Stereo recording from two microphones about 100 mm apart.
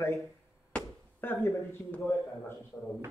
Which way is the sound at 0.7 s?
20° left (ahead or behind).